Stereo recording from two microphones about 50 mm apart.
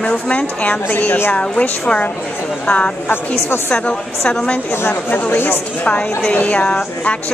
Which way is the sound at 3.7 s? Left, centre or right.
Left.